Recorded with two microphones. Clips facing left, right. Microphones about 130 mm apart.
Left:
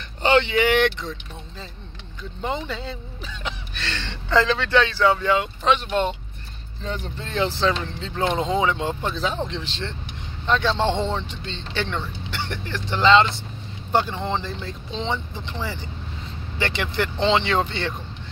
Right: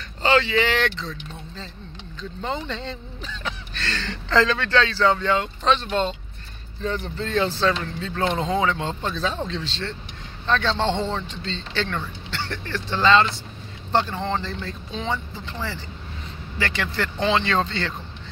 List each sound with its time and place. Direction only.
0.2 s speech: 20° left (ahead or behind)
2.4 s speech: 10° left (ahead or behind)
3.4 s speech: 20° left (ahead or behind)